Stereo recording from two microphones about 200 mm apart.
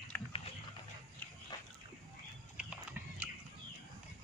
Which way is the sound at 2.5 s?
5° right (ahead or behind).